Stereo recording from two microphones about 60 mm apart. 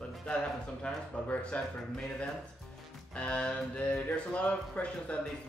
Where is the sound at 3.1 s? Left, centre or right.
Left.